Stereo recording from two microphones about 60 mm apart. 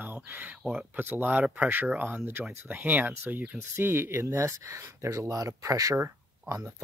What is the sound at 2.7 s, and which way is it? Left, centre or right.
Speech, right.